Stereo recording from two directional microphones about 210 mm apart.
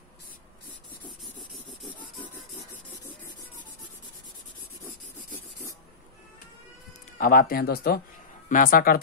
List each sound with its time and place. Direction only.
1.2 s rub: centre (ahead or behind)
7.2 s speech: 45° left (ahead or behind)